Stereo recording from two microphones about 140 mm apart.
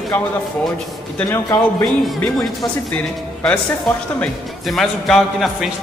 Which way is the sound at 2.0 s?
Centre (ahead or behind).